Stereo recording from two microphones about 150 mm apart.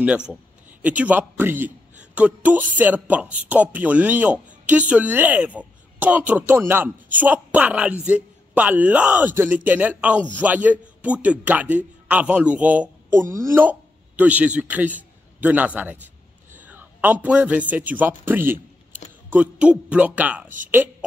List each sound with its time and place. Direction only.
0.0 s a man's voice: 5° right (ahead or behind)
20.4 s speech: 60° right (ahead or behind)